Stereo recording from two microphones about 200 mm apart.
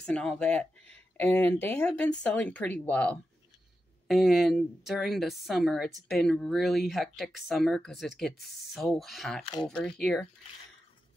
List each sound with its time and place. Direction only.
0.0 s a woman's voice: 5° left (ahead or behind)
9.4 s speech: 25° left (ahead or behind)
9.7 s a woman's voice: 5° left (ahead or behind)